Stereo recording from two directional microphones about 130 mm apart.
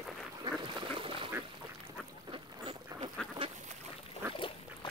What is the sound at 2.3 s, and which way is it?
Boat, 45° right (ahead or behind).